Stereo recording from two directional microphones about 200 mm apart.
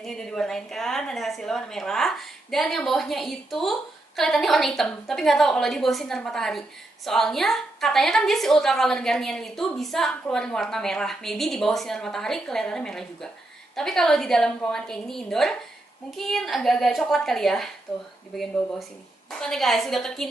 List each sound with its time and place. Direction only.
0.0 s a woman's voice: 5° left (ahead or behind)
19.4 s a woman's voice: centre (ahead or behind)